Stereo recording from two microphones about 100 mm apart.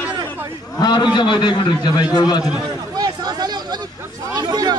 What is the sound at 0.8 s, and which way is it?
A man's voice, 50° left (ahead or behind).